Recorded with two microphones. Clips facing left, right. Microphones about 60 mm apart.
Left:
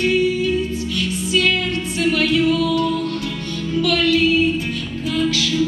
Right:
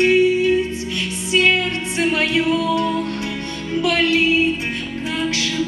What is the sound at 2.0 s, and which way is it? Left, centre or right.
Music, right.